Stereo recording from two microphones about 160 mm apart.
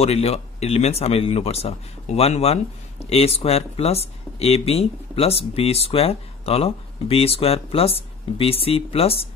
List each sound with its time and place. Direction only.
0.0 s speech: 40° left (ahead or behind)